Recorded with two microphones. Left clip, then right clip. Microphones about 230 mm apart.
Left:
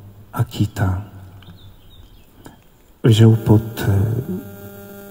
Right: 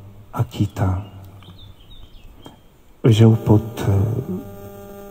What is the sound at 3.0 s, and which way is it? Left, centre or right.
Speech, left.